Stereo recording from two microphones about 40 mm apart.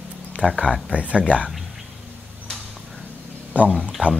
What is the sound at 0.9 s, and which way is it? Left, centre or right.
Speech, right.